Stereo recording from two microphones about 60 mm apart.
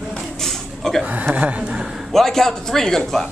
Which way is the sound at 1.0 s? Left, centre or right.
Right.